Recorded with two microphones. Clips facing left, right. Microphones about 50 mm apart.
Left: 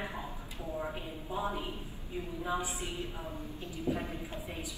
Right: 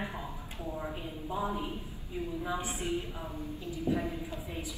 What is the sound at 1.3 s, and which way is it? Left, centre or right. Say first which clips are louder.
Speech: right 1 dB; left.